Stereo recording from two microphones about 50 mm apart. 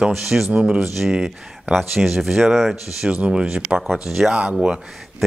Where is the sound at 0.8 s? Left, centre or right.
Centre.